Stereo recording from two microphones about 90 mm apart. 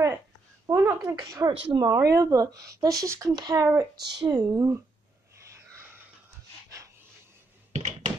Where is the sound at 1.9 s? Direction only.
40° right (ahead or behind).